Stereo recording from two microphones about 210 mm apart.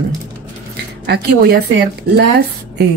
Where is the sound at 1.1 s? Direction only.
50° right (ahead or behind).